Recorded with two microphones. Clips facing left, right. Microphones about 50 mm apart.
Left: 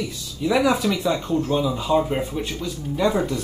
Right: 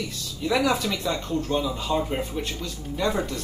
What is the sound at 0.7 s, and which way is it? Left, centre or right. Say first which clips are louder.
Speech: left 4 dB; centre.